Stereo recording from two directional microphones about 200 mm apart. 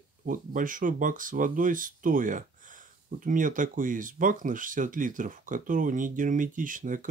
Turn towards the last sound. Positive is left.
turn(degrees=-40)  # may be behind; listen again after turning